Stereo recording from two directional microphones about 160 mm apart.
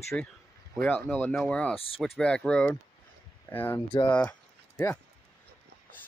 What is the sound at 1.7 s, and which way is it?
Speech, 35° left (ahead or behind).